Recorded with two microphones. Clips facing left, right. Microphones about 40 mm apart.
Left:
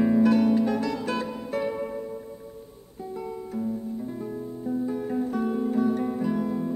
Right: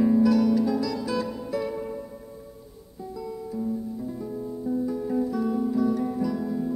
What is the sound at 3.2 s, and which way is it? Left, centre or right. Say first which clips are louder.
Guitar: even; left.